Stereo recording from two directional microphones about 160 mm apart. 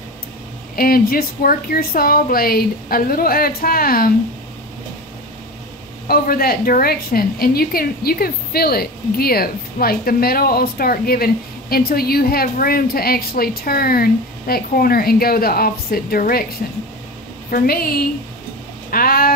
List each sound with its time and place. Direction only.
0.7 s a woman's voice: 65° left (ahead or behind)
6.0 s a woman's voice: 65° left (ahead or behind)